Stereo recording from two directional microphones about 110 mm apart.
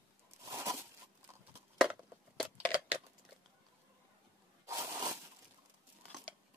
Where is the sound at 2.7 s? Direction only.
15° right (ahead or behind).